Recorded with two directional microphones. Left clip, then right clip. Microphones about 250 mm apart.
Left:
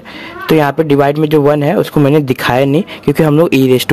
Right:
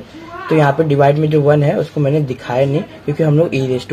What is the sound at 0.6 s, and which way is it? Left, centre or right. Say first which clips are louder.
Speech: left 1 dB; left.